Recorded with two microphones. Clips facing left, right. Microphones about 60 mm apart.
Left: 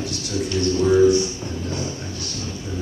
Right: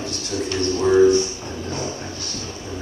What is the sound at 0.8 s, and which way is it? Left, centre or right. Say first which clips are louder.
Music: right 1 dB; centre.